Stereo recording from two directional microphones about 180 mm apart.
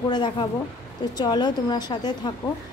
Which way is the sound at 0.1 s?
25° left (ahead or behind).